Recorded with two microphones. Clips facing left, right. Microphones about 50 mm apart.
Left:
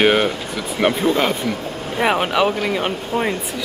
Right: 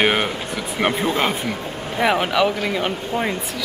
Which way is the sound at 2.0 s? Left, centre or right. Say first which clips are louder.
Left 1 dB; centre.